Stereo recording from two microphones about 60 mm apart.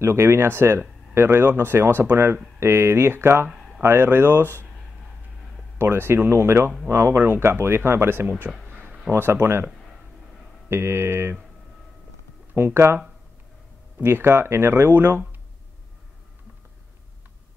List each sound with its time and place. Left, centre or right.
0.0 s speech: right
3.5 s a sound: centre
3.8 s speech: right
5.8 s speech: right
10.7 s speech: right
12.5 s speech: right
14.0 s speech: right